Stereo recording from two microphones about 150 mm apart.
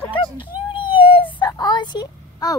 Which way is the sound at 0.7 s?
30° left (ahead or behind).